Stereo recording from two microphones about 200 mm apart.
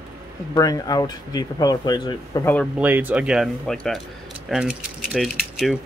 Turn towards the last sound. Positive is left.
turn(degrees=0)  # may be behind; listen again after turning